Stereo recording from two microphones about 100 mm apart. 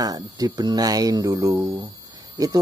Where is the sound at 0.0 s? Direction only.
40° right (ahead or behind).